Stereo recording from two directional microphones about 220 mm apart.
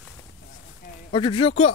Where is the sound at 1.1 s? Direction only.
20° left (ahead or behind).